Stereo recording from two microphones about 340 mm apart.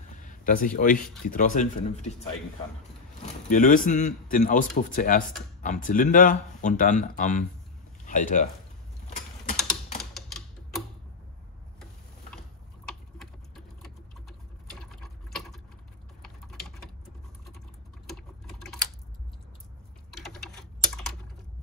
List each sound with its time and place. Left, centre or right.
0.2 s a sound: left
1.2 s speech: left
10.1 s typewriter: centre
14.7 s mechanisms: centre
16.2 s a sound: centre
18.0 s sewing machine: centre
20.1 s typing: centre